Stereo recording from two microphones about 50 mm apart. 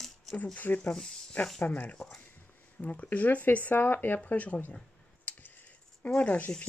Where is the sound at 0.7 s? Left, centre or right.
Left.